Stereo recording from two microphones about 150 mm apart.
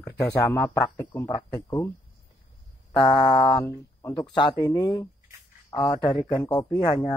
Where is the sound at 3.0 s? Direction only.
35° left (ahead or behind).